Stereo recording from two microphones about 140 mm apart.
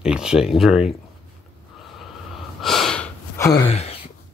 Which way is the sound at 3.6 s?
45° left (ahead or behind).